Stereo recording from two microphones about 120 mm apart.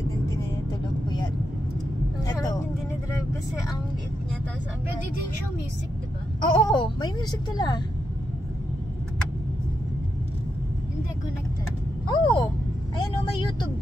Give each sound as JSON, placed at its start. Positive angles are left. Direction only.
{"t": 2.2, "sound": "vehicle", "side_deg": 35}
{"t": 6.5, "sound": "a woman's voice", "side_deg": 40}
{"t": 12.1, "sound": "a woman's voice", "side_deg": 40}
{"t": 13.0, "sound": "vehicle", "side_deg": 35}